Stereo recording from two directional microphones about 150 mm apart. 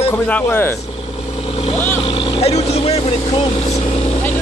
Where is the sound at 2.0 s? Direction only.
35° left (ahead or behind).